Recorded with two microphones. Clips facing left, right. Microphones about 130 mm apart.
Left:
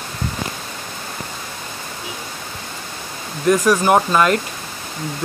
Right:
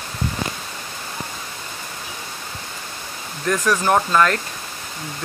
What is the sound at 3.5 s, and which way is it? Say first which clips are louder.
Speech: left 4 dB; 15° left (ahead or behind).